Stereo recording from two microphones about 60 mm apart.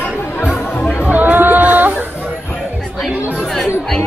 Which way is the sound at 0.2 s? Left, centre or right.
Left.